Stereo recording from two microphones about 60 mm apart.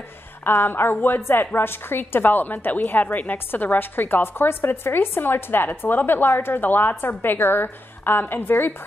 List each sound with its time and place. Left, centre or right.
0.4 s a woman's voice: left